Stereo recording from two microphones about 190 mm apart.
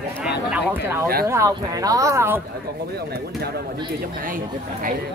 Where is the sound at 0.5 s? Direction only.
10° right (ahead or behind).